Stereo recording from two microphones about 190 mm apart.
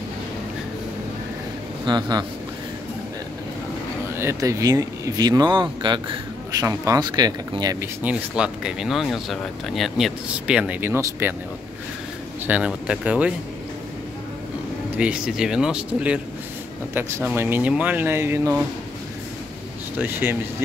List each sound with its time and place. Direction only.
1.9 s speech: 20° right (ahead or behind)
4.2 s speech: 15° right (ahead or behind)
8.0 s speech: 5° right (ahead or behind)
12.4 s speech: 5° right (ahead or behind)
15.0 s speech: 5° right (ahead or behind)
17.4 s speech: 10° right (ahead or behind)
20.0 s speech: 10° right (ahead or behind)